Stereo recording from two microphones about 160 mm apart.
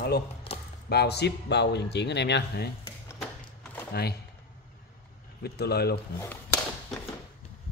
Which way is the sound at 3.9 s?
80° left.